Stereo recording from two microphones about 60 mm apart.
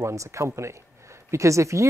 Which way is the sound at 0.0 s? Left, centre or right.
Right.